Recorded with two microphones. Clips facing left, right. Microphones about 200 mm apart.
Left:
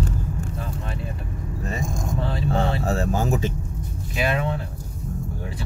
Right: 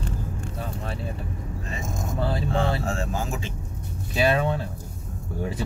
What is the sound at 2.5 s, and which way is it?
Speech, 40° left (ahead or behind).